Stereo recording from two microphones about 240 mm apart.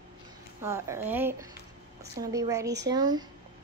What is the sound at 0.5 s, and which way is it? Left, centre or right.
Speech, centre.